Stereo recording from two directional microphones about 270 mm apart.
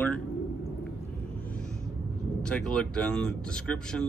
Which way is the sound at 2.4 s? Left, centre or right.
Centre.